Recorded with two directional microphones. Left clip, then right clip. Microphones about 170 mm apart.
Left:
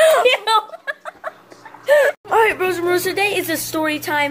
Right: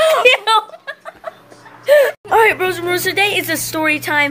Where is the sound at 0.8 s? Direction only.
45° left (ahead or behind).